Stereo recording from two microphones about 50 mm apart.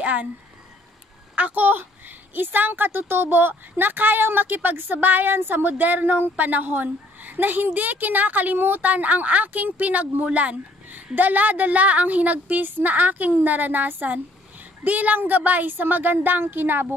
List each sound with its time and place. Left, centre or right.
0.0 s speech: right
1.3 s a woman's voice: right